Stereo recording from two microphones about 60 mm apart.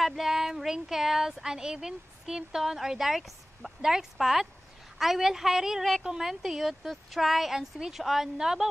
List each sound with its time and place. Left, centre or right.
0.0 s a woman's voice: centre